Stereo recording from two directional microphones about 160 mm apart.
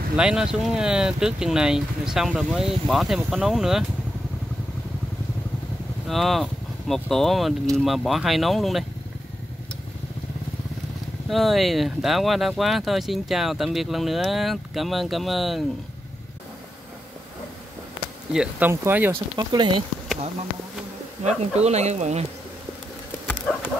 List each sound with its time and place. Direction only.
0.1 s speech: 5° right (ahead or behind)
6.0 s speech: centre (ahead or behind)
11.2 s speech: centre (ahead or behind)
18.3 s speech: 5° right (ahead or behind)
19.3 s speech: 30° right (ahead or behind)
21.2 s speech: 45° right (ahead or behind)
23.2 s dog: 10° left (ahead or behind)